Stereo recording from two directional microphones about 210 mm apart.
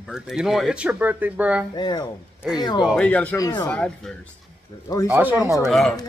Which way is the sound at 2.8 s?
Centre (ahead or behind).